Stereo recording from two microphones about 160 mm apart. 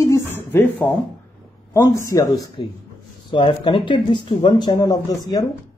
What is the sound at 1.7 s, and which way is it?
Speech, 20° left (ahead or behind).